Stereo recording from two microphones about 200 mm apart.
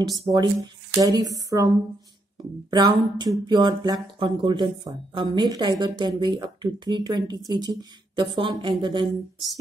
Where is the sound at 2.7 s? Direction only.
20° right (ahead or behind).